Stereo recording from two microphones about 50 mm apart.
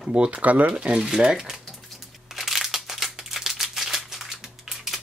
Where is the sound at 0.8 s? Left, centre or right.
Centre.